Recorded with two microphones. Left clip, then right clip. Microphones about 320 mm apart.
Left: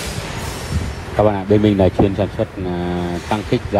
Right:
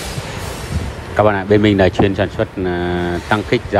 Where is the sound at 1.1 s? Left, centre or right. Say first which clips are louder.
Right 2 dB; left.